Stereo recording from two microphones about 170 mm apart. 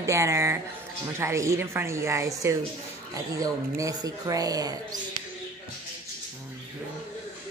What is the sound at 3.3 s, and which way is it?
Speech, 20° right (ahead or behind).